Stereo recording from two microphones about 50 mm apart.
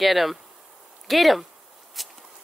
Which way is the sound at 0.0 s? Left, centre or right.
Centre.